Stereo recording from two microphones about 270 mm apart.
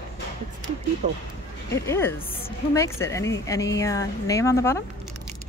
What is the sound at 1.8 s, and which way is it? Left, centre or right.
A woman's voice, centre.